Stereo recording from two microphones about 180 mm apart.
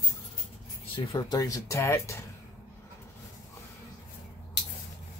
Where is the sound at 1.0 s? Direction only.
25° left (ahead or behind).